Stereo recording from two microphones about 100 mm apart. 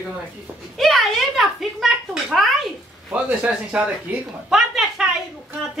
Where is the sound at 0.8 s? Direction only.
Centre (ahead or behind).